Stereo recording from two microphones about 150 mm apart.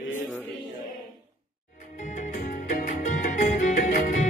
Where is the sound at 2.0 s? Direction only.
60° left (ahead or behind).